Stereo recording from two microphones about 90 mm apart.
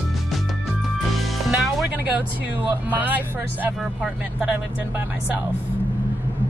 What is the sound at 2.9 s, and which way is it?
Speech, 20° right (ahead or behind).